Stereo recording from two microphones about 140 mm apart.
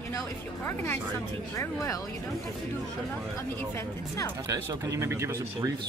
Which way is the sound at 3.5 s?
20° left (ahead or behind).